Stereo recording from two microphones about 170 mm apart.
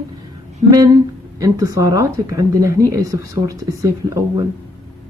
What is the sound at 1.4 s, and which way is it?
A woman's voice, 20° right (ahead or behind).